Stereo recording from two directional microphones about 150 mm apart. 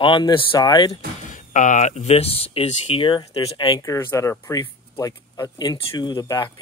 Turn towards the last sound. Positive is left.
turn(degrees=25)  # may be behind; listen again after turning